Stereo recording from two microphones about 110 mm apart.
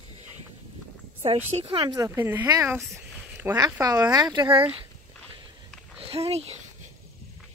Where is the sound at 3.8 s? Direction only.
35° right (ahead or behind); by 4.7 s 50° right (ahead or behind).